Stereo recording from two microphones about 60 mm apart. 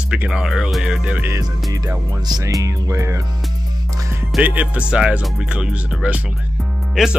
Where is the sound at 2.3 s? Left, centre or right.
Right.